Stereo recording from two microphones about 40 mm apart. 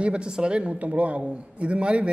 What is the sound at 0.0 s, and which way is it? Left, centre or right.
A man's voice, right.